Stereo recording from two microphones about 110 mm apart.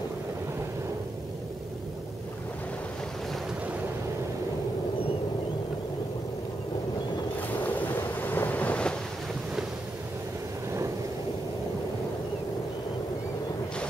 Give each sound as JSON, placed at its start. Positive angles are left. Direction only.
{"t": 7.6, "sound": "boat", "side_deg": 15}